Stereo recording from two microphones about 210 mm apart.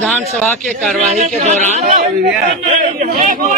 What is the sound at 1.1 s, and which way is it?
A man's voice, 35° right (ahead or behind).